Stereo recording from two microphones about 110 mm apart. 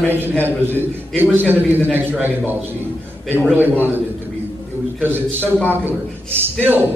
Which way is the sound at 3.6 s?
20° right (ahead or behind).